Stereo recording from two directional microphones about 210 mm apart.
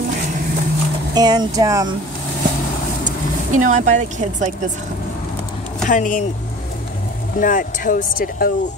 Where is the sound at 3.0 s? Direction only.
35° right (ahead or behind).